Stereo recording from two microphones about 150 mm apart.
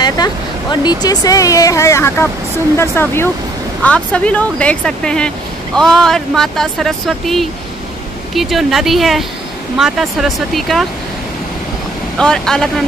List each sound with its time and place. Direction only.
0.0 s speech: 30° left (ahead or behind); by 10.9 s centre (ahead or behind)
12.2 s speech: 5° left (ahead or behind)